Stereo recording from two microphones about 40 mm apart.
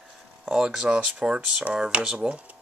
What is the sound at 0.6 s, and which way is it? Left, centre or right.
Speech, right.